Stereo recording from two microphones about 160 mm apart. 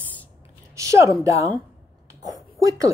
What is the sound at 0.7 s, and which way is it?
Speech, 20° right (ahead or behind).